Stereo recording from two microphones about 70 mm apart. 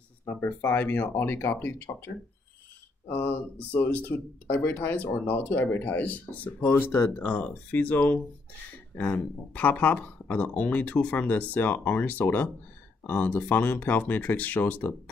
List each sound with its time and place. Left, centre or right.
0.5 s speech: left
3.1 s speech: left